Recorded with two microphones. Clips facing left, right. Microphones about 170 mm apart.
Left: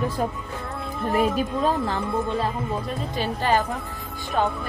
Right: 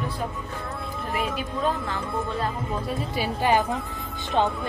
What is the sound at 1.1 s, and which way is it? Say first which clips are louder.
Speech: left 7 dB; 40° left (ahead or behind).